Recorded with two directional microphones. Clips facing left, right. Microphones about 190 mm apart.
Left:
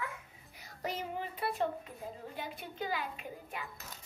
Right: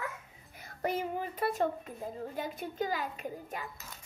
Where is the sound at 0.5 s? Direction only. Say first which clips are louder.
Right 6 dB; 55° right (ahead or behind).